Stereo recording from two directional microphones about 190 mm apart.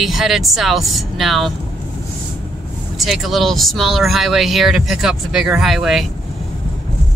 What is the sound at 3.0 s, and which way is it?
Speech, centre (ahead or behind).